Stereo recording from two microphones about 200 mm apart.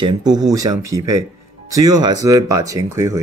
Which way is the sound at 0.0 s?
20° right (ahead or behind).